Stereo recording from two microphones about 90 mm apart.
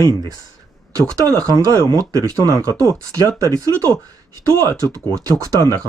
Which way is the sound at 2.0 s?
45° right (ahead or behind).